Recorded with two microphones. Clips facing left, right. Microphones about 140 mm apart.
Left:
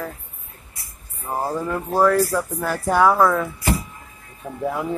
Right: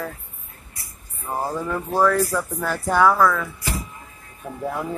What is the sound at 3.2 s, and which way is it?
Speech, 25° left (ahead or behind).